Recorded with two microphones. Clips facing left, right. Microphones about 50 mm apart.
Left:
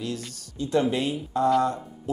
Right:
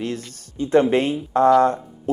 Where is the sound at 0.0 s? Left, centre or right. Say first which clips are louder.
Right 5 dB; right.